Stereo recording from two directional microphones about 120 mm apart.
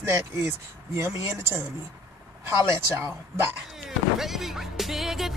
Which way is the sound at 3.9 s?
5° right (ahead or behind).